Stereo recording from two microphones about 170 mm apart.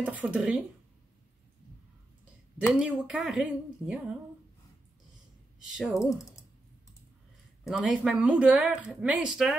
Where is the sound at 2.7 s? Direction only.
5° right (ahead or behind).